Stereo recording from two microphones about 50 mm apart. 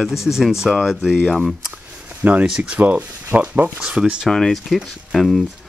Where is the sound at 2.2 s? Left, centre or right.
Right.